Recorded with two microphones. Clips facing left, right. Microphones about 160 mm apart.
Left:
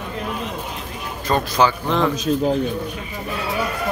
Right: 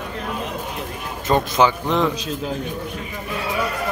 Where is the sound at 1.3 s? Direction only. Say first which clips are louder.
Right 1 dB; 20° right (ahead or behind).